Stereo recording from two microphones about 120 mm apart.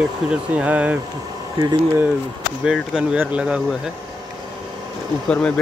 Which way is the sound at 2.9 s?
10° right (ahead or behind).